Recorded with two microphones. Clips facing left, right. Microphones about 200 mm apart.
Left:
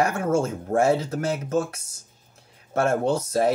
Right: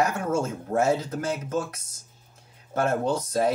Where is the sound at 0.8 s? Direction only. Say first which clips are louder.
Left 3 dB; 30° left (ahead or behind).